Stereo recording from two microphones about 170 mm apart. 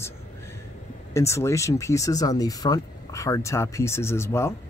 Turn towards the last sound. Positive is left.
turn(degrees=15)  # may be behind; listen again after turning